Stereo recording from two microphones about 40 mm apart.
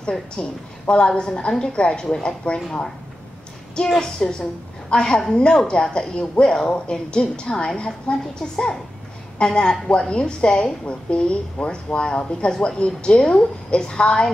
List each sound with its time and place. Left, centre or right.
0.0 s a woman's voice: left
4.0 s a woman's voice: centre